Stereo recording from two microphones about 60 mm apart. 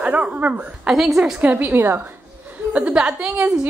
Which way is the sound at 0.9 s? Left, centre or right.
Centre.